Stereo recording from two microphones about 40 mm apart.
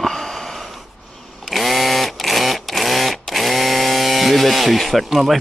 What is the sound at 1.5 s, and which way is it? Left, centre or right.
Sewing machine, centre.